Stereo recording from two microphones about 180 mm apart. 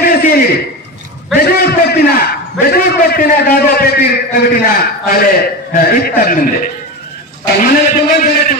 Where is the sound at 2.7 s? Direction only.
60° left (ahead or behind).